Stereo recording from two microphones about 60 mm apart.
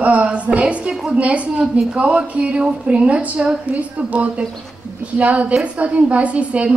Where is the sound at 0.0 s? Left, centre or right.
Right.